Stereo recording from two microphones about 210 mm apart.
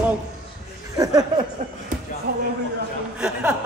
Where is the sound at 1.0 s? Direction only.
20° right (ahead or behind).